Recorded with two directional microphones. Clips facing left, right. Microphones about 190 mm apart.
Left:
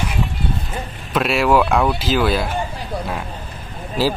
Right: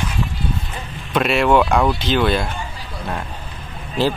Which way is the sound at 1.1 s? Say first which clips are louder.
Right 1 dB; centre (ahead or behind).